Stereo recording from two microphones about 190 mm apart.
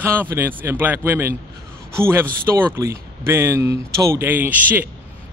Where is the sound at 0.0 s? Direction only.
10° right (ahead or behind).